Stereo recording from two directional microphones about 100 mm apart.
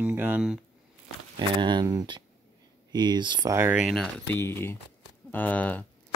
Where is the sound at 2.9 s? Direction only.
45° right (ahead or behind).